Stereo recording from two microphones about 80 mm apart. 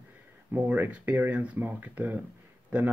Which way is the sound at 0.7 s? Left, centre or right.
Centre.